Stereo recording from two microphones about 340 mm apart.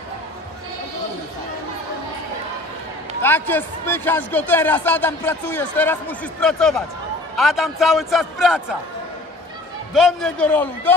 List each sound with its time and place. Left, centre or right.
3.2 s speech: centre
9.9 s speech: centre